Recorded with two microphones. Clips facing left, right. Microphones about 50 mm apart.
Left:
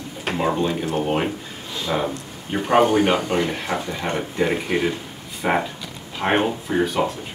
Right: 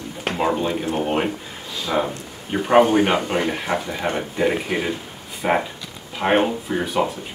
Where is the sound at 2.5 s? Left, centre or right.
Centre.